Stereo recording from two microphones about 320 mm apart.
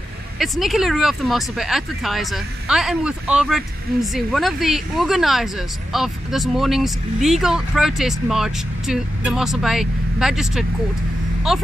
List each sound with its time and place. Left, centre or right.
0.4 s speech: centre